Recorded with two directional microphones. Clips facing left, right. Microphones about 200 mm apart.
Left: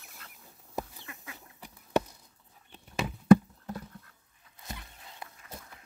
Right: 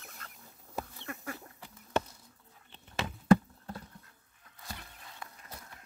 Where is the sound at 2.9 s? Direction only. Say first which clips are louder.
Left 4 dB; 15° left (ahead or behind).